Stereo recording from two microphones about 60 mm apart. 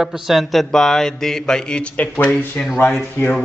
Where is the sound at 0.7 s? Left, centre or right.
Centre.